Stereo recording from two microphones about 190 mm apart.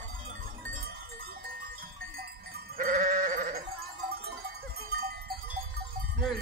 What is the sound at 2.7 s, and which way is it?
Sheep, 45° right (ahead or behind).